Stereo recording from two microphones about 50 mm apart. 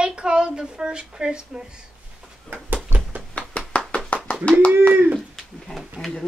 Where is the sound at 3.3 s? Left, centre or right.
Left.